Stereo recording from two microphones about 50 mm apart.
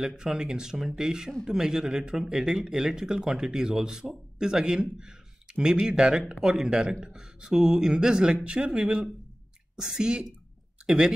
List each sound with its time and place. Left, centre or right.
0.3 s a man's voice: centre
9.8 s speech: centre